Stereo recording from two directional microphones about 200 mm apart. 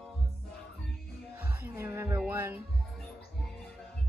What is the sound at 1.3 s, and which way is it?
Music, 10° right (ahead or behind).